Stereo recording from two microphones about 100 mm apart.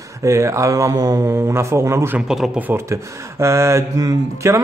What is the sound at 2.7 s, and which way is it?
Speech, 25° right (ahead or behind).